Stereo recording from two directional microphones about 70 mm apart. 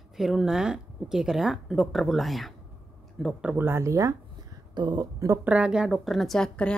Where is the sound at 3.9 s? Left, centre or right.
Right.